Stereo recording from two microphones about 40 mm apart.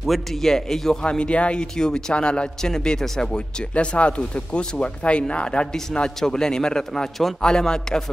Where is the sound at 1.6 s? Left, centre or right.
Centre.